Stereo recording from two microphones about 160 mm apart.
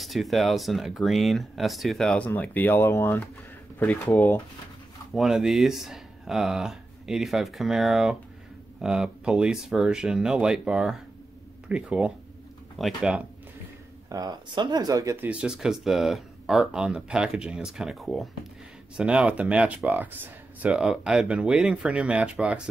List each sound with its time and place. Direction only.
0.0 s speech: centre (ahead or behind)
5.1 s speech: centre (ahead or behind)
14.0 s speech: 25° right (ahead or behind)
15.2 s speech: 5° right (ahead or behind)